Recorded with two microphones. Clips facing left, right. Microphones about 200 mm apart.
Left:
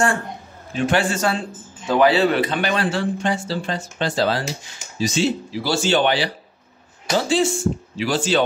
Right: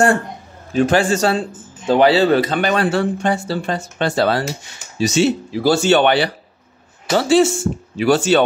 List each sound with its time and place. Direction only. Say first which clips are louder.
0.7 s a man's voice: right 5 dB; 40° right (ahead or behind); by 8.4 s 60° right (ahead or behind)